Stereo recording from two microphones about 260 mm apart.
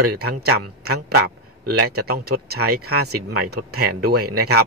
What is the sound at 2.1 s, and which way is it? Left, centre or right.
Speech, right.